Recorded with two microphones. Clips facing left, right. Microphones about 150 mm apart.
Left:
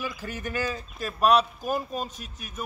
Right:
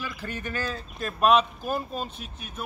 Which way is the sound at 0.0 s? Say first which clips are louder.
Left 1 dB; 10° left (ahead or behind).